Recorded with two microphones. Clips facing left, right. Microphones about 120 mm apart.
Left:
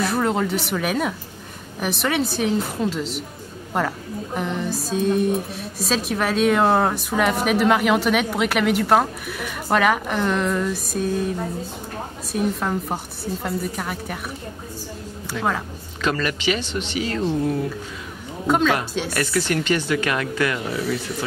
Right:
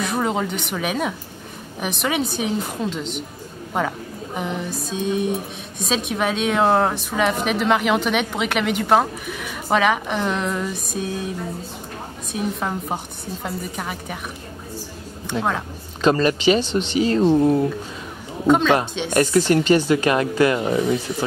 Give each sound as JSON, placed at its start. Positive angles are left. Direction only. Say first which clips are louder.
{"t": 0.0, "sound": "a woman's voice", "louder": "left 1 dB", "side_deg": 0}
{"t": 16.0, "sound": "speech", "louder": "right 6 dB", "side_deg": -30}
{"t": 18.5, "sound": "a woman's voice", "louder": "right 3 dB", "side_deg": 0}
{"t": 19.1, "sound": "speech", "louder": "right 7 dB", "side_deg": -25}